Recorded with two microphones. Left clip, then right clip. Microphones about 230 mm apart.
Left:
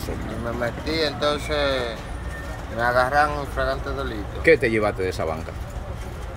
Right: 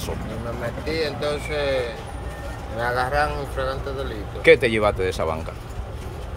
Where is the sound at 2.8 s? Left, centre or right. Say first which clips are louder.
Left 3 dB; centre.